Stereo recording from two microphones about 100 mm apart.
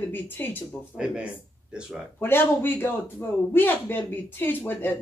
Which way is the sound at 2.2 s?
20° left (ahead or behind).